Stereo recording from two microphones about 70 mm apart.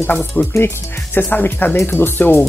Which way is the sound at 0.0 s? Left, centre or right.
Left.